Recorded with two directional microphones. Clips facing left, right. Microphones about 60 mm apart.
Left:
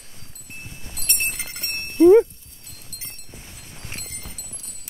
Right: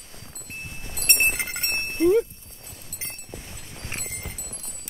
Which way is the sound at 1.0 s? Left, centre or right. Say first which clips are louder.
Right 5 dB; right.